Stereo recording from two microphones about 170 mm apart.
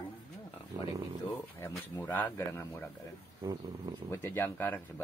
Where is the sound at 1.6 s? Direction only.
15° left (ahead or behind).